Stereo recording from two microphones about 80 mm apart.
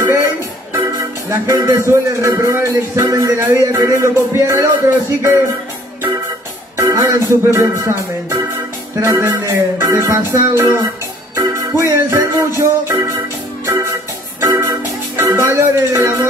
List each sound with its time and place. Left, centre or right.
1.3 s a man's voice: right
7.1 s a man's voice: right
13.7 s music: right